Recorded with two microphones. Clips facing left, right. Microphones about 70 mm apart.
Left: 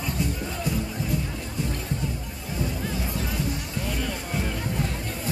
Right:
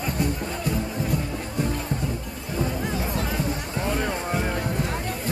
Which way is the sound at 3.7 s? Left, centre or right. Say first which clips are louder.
Right 7 dB; right.